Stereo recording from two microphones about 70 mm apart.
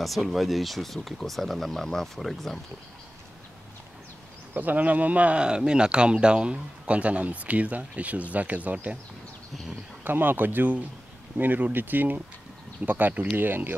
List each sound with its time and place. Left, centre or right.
0.0 s speech: centre
4.6 s speech: right
10.0 s speech: right